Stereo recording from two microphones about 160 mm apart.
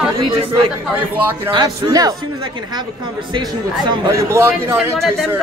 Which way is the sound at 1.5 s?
25° right (ahead or behind).